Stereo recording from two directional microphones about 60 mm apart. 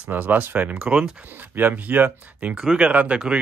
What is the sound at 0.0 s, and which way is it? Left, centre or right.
Speech, right.